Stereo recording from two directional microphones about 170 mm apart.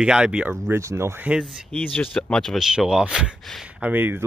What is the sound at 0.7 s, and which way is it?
Speech, 15° right (ahead or behind).